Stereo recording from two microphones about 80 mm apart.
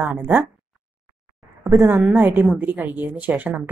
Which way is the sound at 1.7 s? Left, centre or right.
Right.